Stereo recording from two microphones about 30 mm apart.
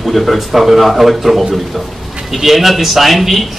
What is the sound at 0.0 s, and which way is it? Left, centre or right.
Speech, centre.